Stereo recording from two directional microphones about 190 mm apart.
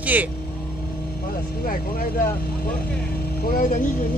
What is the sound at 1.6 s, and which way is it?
Speech, 50° left (ahead or behind).